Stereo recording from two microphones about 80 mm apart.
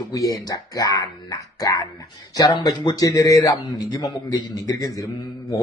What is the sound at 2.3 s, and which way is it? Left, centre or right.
Speech, left.